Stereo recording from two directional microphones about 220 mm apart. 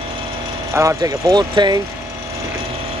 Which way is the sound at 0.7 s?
15° right (ahead or behind).